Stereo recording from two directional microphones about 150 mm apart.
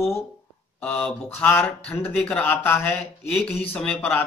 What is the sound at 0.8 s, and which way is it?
Speech, 10° left (ahead or behind).